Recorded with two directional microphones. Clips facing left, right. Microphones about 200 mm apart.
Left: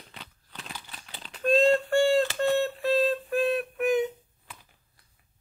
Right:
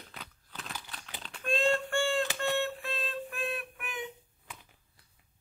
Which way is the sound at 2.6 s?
40° left (ahead or behind).